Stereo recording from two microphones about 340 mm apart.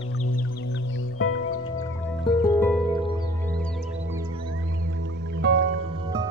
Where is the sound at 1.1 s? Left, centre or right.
Left.